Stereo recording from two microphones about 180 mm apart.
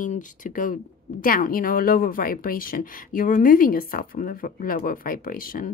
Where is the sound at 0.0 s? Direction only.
45° left (ahead or behind).